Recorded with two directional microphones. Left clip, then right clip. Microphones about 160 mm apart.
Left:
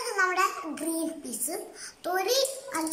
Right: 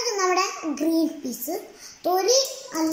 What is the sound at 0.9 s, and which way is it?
Speech, 5° right (ahead or behind).